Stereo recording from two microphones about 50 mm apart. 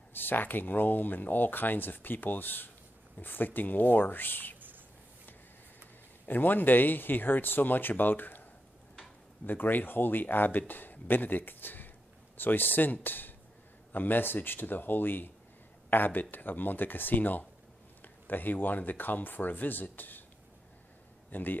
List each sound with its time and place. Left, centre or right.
0.1 s speech: left
6.2 s speech: left
9.5 s speech: left
21.3 s speech: left